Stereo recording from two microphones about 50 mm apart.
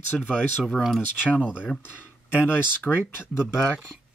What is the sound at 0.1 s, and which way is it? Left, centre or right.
Speech, centre.